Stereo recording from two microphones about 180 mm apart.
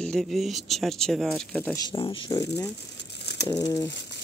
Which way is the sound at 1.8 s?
25° left (ahead or behind).